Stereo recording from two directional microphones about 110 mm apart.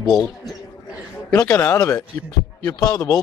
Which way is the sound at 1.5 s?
30° left (ahead or behind).